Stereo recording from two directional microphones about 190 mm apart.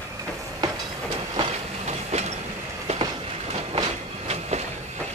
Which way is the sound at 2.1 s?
35° right (ahead or behind).